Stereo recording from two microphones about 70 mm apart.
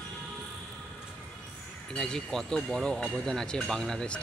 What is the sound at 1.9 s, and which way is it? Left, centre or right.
Speech, centre.